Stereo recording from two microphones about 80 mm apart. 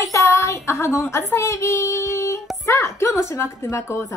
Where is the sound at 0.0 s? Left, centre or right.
Left.